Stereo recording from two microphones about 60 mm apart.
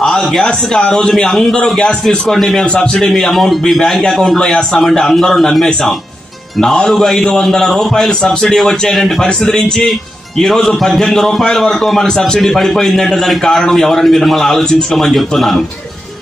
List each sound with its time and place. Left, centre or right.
0.0 s a man's voice: centre
2.6 s a man's voice: centre
3.0 s a man's voice: centre